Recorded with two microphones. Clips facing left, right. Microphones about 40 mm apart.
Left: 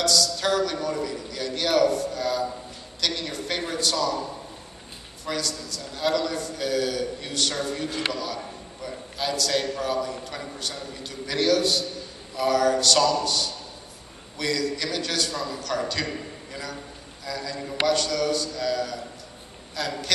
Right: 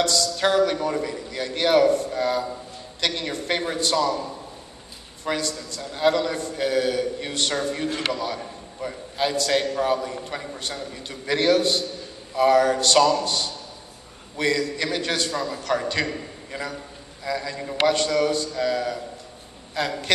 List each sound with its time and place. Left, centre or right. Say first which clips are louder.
0.0 s a man's voice: right 2 dB; right